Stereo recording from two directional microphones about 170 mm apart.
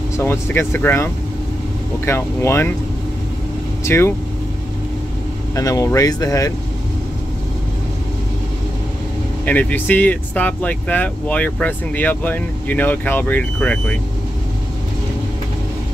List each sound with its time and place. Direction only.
0.2 s speech: 15° left (ahead or behind)
3.8 s speech: 15° left (ahead or behind)
5.6 s speech: 20° left (ahead or behind)
9.5 s speech: 10° left (ahead or behind)